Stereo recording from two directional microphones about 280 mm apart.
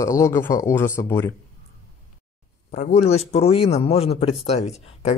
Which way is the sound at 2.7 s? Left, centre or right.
Left.